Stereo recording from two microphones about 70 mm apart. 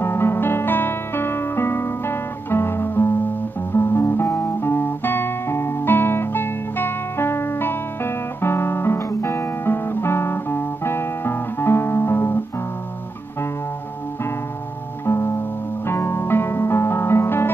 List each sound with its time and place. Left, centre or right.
0.0 s music: left
3.7 s guitar: left
15.0 s music: left